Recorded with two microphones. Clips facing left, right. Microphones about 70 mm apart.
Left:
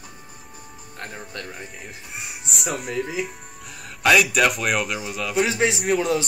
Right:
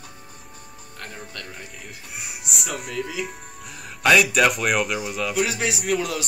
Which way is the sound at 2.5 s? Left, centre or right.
Centre.